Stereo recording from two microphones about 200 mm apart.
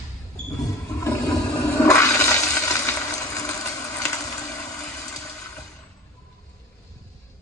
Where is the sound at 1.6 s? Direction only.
15° left (ahead or behind).